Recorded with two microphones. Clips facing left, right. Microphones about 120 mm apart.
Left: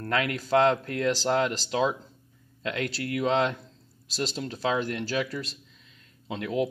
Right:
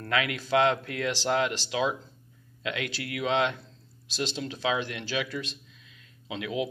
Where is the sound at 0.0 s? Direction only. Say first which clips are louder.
Left 1 dB; 40° left (ahead or behind).